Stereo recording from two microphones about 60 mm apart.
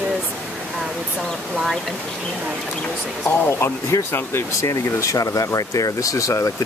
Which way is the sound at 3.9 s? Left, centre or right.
Left.